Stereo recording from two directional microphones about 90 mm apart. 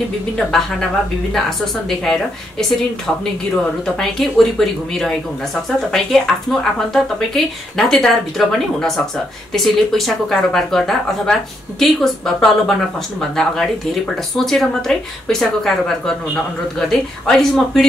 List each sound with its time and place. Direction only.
0.4 s a woman's voice: 5° left (ahead or behind)
1.9 s speech: 5° left (ahead or behind)
4.0 s speech: 5° left (ahead or behind)